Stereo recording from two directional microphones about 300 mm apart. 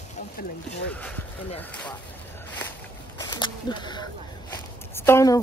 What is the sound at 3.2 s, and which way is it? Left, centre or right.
Speech, centre.